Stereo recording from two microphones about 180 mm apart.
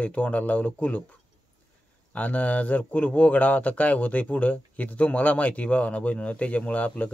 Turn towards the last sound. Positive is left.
turn(degrees=5)  # may be behind; listen again after turning